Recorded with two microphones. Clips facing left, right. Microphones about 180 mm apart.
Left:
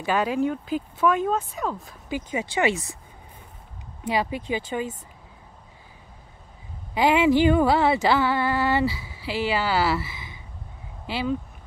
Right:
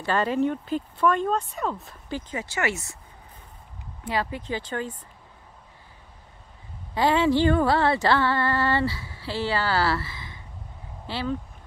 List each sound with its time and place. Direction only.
0.0 s speech: 10° left (ahead or behind)
2.0 s speech: 10° left (ahead or behind)
4.0 s speech: 15° left (ahead or behind)
6.9 s speech: 15° left (ahead or behind)